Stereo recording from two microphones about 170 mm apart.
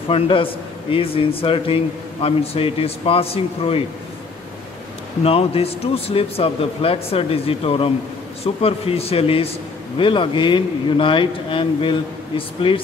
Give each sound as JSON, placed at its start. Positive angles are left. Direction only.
{"t": 0.1, "sound": "a man's voice", "side_deg": 30}
{"t": 5.2, "sound": "a man's voice", "side_deg": 35}